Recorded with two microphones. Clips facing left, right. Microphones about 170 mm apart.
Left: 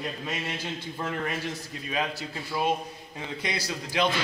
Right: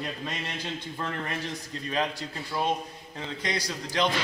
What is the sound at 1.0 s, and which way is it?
Speech, 15° left (ahead or behind).